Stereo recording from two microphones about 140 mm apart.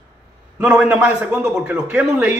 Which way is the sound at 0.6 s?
10° right (ahead or behind).